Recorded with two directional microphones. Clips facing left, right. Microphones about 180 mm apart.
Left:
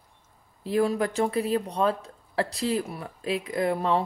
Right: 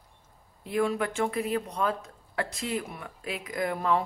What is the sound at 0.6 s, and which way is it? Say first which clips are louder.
Speech: left 3 dB; 35° left (ahead or behind).